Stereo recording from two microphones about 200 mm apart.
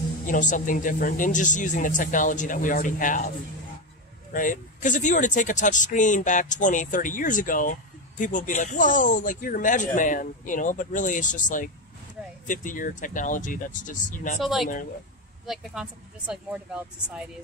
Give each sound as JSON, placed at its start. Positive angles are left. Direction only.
{"t": 0.3, "sound": "speech", "side_deg": 40}
{"t": 4.3, "sound": "speech", "side_deg": 40}
{"t": 14.4, "sound": "speech", "side_deg": 0}